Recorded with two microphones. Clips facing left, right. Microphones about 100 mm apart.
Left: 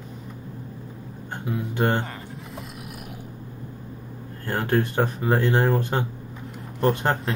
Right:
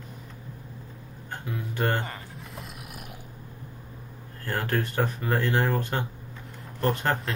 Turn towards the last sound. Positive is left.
turn(degrees=20)  # may be behind; listen again after turning